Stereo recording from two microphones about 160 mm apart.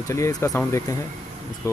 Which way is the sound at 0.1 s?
20° left (ahead or behind).